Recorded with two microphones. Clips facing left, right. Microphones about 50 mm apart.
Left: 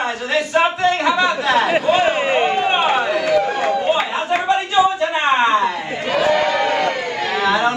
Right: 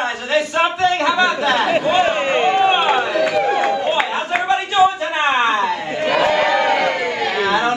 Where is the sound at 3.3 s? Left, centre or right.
Right.